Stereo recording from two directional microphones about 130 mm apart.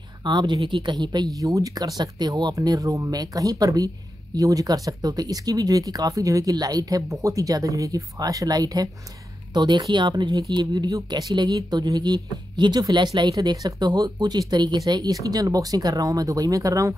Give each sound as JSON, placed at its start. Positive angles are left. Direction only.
{"t": 0.2, "sound": "speech", "side_deg": -35}